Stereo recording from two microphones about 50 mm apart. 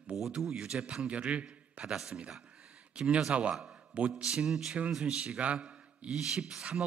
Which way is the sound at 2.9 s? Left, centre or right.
Right.